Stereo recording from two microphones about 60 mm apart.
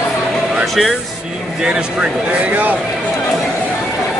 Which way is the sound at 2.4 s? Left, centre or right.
Right.